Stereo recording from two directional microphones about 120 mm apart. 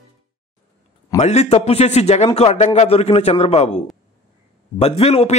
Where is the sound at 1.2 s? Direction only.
70° left (ahead or behind).